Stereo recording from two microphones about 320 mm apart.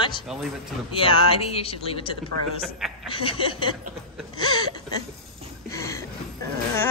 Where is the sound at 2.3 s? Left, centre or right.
Right.